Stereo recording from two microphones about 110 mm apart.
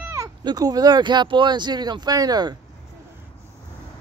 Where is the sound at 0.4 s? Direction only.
40° right (ahead or behind).